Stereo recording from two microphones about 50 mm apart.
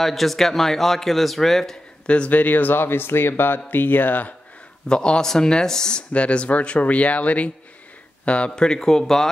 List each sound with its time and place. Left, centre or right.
0.0 s speech: centre
2.0 s speech: left
4.8 s speech: centre